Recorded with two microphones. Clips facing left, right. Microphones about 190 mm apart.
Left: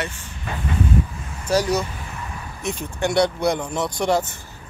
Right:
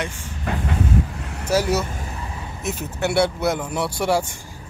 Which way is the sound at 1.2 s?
70° right (ahead or behind).